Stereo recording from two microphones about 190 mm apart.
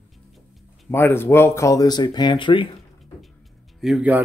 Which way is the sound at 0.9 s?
10° left (ahead or behind).